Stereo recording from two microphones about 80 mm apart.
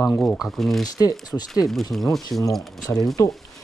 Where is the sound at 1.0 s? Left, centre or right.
Left.